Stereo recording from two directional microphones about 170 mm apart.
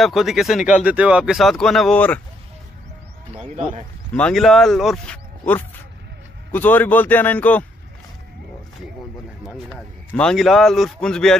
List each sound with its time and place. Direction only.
0.0 s a man's voice: centre (ahead or behind)
4.2 s a man's voice: 5° left (ahead or behind)
9.7 s a man's voice: 5° left (ahead or behind)